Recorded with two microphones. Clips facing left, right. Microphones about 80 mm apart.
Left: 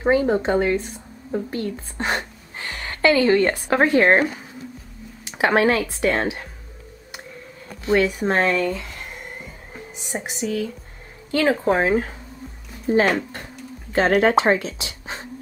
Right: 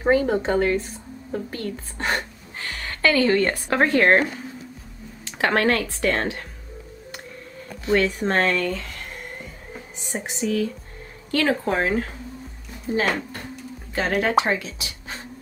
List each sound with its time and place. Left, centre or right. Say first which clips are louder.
0.1 s a woman's voice: left 1 dB; centre
7.9 s speech: left 2 dB; centre
10.1 s speech: left 1 dB; centre
11.3 s speech: left 3 dB; centre
12.9 s speech: left 5 dB; left